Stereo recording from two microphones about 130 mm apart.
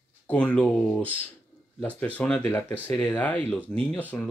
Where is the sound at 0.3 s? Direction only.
10° left (ahead or behind).